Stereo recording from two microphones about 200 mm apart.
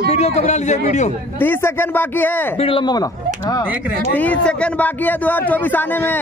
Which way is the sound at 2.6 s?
25° left (ahead or behind).